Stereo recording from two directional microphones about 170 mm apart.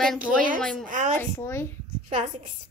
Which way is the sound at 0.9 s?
50° right (ahead or behind).